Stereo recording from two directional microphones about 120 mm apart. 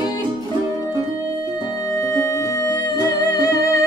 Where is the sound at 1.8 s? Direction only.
30° left (ahead or behind).